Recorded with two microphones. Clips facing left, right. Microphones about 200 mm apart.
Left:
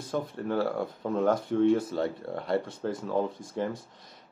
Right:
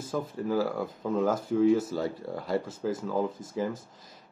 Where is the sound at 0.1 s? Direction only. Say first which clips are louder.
Right 1 dB; 5° right (ahead or behind).